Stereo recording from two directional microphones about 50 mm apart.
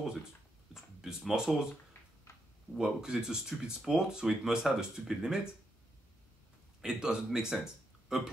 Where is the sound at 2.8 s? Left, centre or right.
Centre.